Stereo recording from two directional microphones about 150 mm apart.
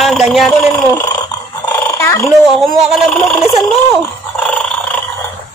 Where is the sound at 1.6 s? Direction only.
20° left (ahead or behind).